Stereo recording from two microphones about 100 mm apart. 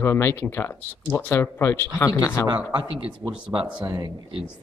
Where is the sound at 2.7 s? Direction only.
55° right (ahead or behind).